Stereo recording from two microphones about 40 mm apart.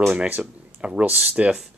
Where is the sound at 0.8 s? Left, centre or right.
Right.